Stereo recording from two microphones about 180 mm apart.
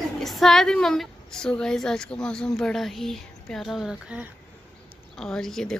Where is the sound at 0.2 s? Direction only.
Centre (ahead or behind).